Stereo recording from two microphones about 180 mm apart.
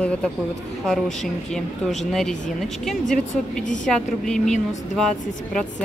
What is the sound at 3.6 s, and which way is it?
Speech, 45° left (ahead or behind).